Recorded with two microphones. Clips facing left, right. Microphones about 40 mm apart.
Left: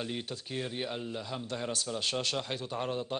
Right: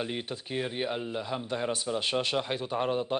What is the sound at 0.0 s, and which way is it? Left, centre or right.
Speech, right.